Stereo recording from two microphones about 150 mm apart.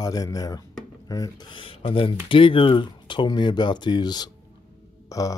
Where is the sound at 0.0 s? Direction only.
25° left (ahead or behind).